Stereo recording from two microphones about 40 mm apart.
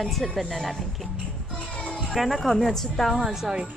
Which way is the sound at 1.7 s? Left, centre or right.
Left.